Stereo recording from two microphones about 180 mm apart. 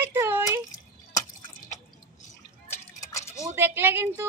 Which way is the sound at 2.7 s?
15° left (ahead or behind).